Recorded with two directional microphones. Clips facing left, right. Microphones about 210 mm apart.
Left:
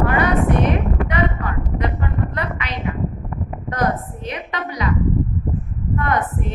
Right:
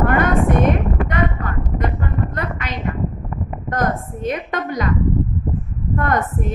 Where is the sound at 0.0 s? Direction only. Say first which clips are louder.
Right 1 dB; 50° right (ahead or behind).